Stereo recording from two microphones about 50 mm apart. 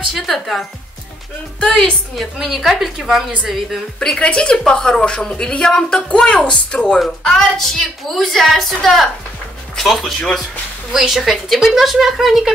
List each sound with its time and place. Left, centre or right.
0.1 s a woman's voice: centre
2.3 s a woman's voice: centre
4.0 s a woman's voice: centre
7.0 s a woman's voice: centre